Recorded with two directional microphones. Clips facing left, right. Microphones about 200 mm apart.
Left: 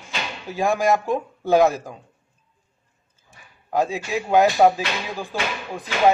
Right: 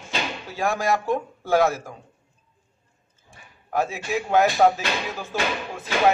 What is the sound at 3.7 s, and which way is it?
Speech, 15° left (ahead or behind).